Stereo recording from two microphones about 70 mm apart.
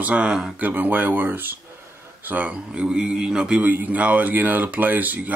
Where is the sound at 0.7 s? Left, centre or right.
Right.